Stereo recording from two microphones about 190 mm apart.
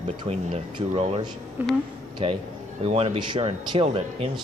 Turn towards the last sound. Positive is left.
turn(degrees=-30)  # may be behind; listen again after turning